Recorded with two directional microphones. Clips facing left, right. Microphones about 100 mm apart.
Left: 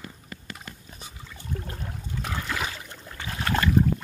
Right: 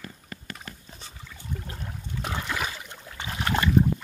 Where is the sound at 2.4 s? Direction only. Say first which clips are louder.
Even; 5° right (ahead or behind).